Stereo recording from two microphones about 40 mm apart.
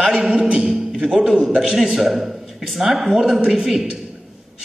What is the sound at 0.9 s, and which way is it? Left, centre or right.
Speech, right.